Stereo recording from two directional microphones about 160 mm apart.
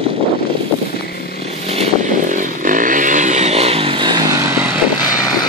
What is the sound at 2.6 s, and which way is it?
Motorcycle, 55° right (ahead or behind).